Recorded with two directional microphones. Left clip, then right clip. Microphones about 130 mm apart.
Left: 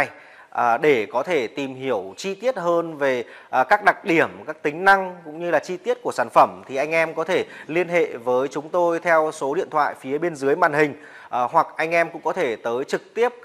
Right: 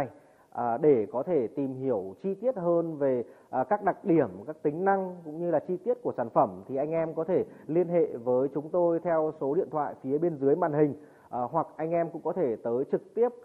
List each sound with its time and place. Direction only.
0.6 s speech: 35° right (ahead or behind)
2.5 s speech: 30° right (ahead or behind)
6.7 s speech: 40° right (ahead or behind)